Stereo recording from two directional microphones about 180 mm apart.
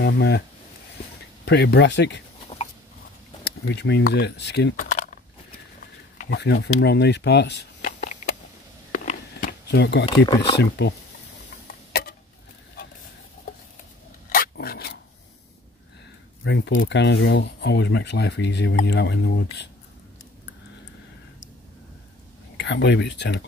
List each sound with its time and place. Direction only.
0.0 s speech: 75° left (ahead or behind)
1.4 s speech: 65° left (ahead or behind)
3.4 s speech: 70° left (ahead or behind)
4.7 s a sound: 45° left (ahead or behind)
6.2 s speech: 70° left (ahead or behind)
7.8 s a sound: 45° left (ahead or behind)
9.7 s speech: 70° left (ahead or behind)
10.0 s speech: 25° left (ahead or behind)
10.6 s speech: 70° left (ahead or behind)
11.9 s a sound: 60° left (ahead or behind)
14.3 s filing: 55° left (ahead or behind)
16.4 s speech: 75° left (ahead or behind)
22.6 s speech: 75° left (ahead or behind)